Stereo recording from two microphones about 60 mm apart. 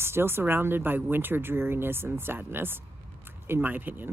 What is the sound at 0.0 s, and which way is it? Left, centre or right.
Speech, right.